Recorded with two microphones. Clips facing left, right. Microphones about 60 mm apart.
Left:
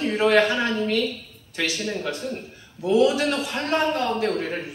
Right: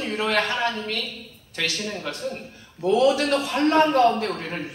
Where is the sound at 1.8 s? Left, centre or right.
Centre.